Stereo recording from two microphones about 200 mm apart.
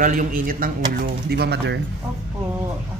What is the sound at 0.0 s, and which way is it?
A man's voice, 40° right (ahead or behind).